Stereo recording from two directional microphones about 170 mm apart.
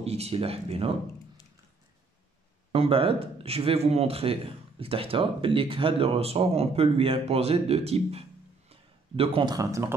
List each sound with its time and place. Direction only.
0.0 s speech: 35° right (ahead or behind)
2.7 s speech: 35° right (ahead or behind); by 9.9 s 15° right (ahead or behind)